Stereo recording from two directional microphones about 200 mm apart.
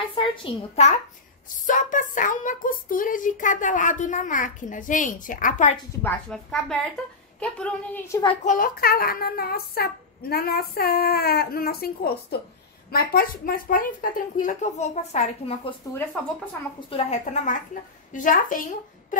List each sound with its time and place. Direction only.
0.1 s a woman's voice: 25° left (ahead or behind)
6.0 s a woman's voice: 5° left (ahead or behind)
8.5 s speech: 45° left (ahead or behind)
15.8 s a woman's voice: 15° left (ahead or behind)
16.9 s speech: 35° left (ahead or behind)